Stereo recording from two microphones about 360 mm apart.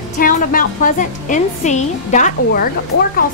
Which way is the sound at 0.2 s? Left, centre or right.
Left.